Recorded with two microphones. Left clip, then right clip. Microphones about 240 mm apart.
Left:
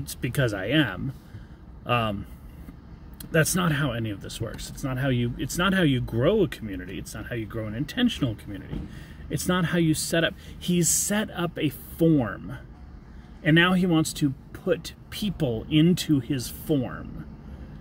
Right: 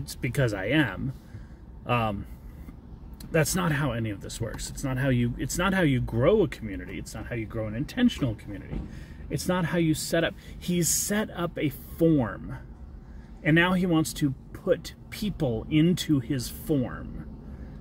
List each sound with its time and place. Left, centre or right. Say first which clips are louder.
0.0 s speech: left 1 dB; centre
3.2 s speech: left 2 dB; centre